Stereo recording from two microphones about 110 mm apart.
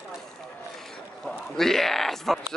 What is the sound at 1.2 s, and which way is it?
A man's voice, 5° left (ahead or behind).